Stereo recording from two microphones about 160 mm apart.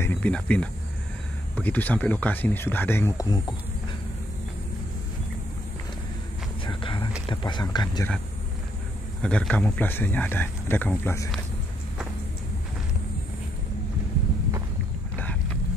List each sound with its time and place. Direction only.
0.0 s speech: 10° left (ahead or behind)
6.6 s a sound: 30° left (ahead or behind)
7.2 s speech: 30° left (ahead or behind)
9.2 s speech: 5° left (ahead or behind)